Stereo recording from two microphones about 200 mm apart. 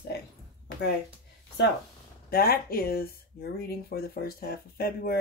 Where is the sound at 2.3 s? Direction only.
50° left (ahead or behind).